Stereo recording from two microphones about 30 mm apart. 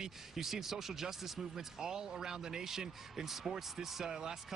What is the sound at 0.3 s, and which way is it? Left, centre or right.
A man's voice, centre.